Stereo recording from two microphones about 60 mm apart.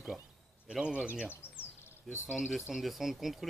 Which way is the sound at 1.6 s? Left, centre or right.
Left.